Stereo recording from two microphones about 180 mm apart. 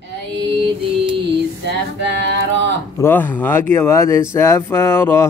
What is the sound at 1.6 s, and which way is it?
Speech, 70° right (ahead or behind).